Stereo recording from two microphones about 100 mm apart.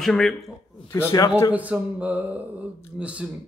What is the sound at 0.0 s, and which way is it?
Speech, 5° left (ahead or behind).